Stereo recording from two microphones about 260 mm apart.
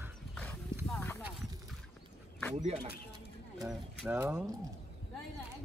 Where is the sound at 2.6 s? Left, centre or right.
Right.